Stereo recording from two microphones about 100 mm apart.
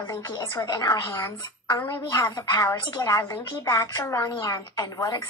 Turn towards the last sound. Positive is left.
turn(degrees=40)  # may be behind; listen again after turning